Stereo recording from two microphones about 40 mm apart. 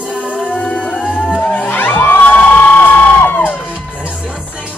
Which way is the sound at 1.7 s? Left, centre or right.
Left.